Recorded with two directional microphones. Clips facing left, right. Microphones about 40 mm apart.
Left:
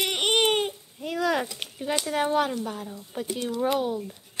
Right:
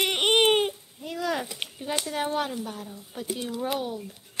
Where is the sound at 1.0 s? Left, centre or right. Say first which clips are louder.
Left 4 dB; left.